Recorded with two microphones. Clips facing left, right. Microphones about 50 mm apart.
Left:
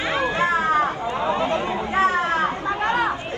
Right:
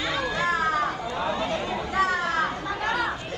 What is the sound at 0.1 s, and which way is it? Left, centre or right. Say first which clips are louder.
Chatter: left 6 dB; left.